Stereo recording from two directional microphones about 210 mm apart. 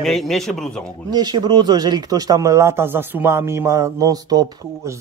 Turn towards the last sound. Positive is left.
turn(degrees=-15)  # may be behind; listen again after turning